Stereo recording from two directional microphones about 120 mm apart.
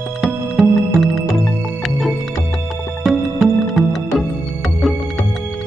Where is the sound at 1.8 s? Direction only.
Centre (ahead or behind).